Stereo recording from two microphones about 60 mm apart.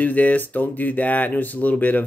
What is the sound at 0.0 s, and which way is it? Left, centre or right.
Speech, left.